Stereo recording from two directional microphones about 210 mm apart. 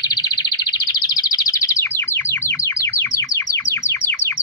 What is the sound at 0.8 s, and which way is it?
Chirp, 15° left (ahead or behind).